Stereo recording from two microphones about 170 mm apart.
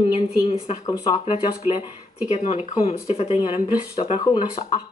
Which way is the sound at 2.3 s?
40° left (ahead or behind).